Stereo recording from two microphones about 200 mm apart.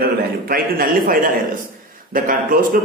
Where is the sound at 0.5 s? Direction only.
45° right (ahead or behind).